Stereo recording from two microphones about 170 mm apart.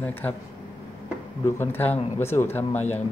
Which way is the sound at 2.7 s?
40° left (ahead or behind).